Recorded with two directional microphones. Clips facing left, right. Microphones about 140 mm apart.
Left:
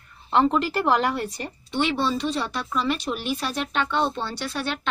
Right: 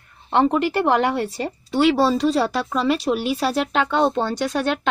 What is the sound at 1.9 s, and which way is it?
Speech, 35° right (ahead or behind).